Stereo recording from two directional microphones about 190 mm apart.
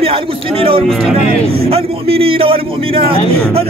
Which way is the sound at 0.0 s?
30° right (ahead or behind).